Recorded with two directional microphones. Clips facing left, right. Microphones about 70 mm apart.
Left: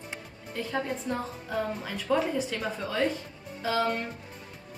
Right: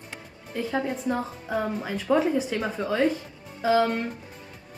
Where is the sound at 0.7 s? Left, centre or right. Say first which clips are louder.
Right 4 dB; centre.